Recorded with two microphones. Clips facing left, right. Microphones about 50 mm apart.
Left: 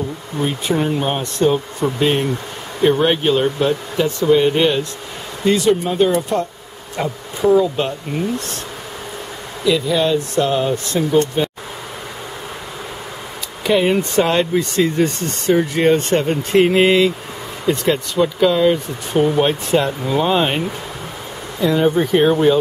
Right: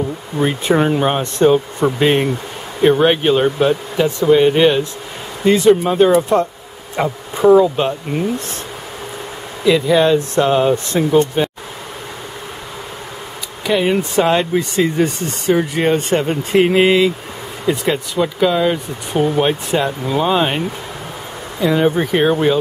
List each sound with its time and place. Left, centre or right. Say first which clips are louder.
0.4 s speech: right 4 dB; right
1.4 s speech: right 4 dB; centre
1.8 s speech: right 1 dB; right
2.8 s speech: right 2 dB; centre; by 7.6 s right
7.6 s speech: right 3 dB; centre
9.7 s speech: right 4 dB; right
11.1 s speech: right 2 dB; centre
13.7 s speech: even; centre
21.5 s speech: even; centre